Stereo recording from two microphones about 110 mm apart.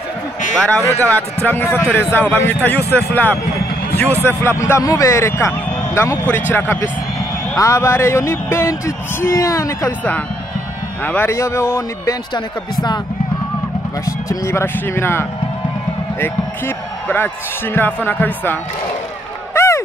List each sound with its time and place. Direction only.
0.6 s speech: 10° left (ahead or behind); by 9.9 s 25° left (ahead or behind)
11.1 s speech: 20° left (ahead or behind)
14.0 s speech: 30° left (ahead or behind)
19.5 s a sound: 25° left (ahead or behind)